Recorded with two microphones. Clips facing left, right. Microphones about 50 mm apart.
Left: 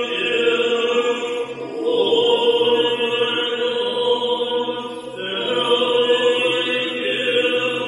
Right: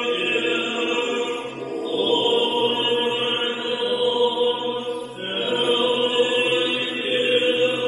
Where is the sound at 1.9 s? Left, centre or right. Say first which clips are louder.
Left 3 dB; left.